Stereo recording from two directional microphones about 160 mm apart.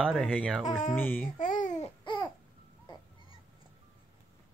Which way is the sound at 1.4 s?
55° left (ahead or behind).